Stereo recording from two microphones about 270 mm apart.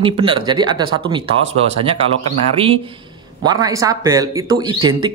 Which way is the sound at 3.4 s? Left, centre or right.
Centre.